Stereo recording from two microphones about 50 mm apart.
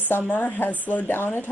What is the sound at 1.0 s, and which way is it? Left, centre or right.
Speech, left.